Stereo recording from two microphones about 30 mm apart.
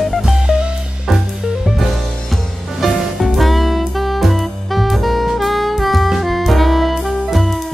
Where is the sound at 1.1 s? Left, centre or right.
Centre.